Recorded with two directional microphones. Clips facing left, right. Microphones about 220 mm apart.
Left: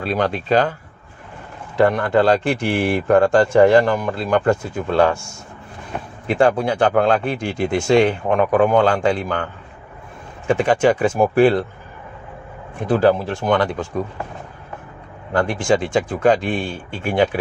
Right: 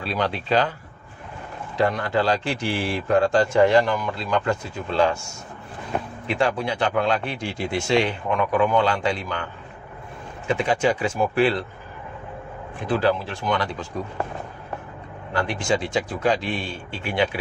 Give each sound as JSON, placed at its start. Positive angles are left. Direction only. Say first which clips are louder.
{"t": 0.0, "sound": "speech", "louder": "left 5 dB", "side_deg": 50}
{"t": 1.8, "sound": "speech", "louder": "left 6 dB", "side_deg": 55}
{"t": 6.2, "sound": "speech", "louder": "left 8 dB", "side_deg": 50}
{"t": 10.5, "sound": "speech", "louder": "left 6 dB", "side_deg": 50}
{"t": 12.8, "sound": "speech", "louder": "left 6 dB", "side_deg": 45}
{"t": 15.3, "sound": "speech", "louder": "left 6 dB", "side_deg": 45}